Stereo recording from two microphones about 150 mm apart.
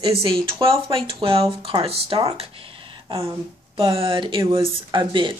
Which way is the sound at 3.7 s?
35° right (ahead or behind).